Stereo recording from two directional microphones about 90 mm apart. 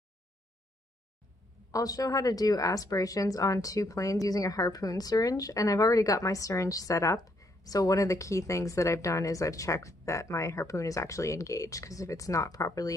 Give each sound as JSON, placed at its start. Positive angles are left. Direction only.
{"t": 1.7, "sound": "speech", "side_deg": 40}